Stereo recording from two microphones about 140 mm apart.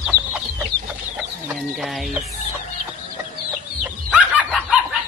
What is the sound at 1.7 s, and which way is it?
Speech, centre (ahead or behind).